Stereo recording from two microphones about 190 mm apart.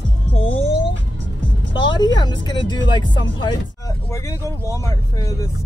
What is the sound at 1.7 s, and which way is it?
Speech, 25° left (ahead or behind).